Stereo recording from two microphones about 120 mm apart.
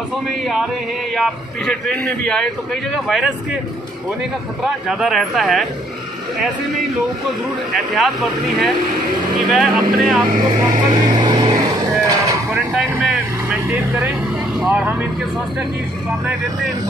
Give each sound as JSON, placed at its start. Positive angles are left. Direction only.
{"t": 1.1, "sound": "a man's voice", "side_deg": 5}
{"t": 4.8, "sound": "a man's voice", "side_deg": 0}
{"t": 7.7, "sound": "a man's voice", "side_deg": 0}
{"t": 10.7, "sound": "vehicle", "side_deg": -35}
{"t": 12.1, "sound": "a sound", "side_deg": -30}
{"t": 12.5, "sound": "vehicle", "side_deg": 0}
{"t": 14.6, "sound": "speech", "side_deg": -5}